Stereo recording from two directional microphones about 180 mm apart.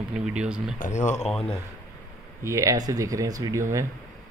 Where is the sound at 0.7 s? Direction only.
45° left (ahead or behind).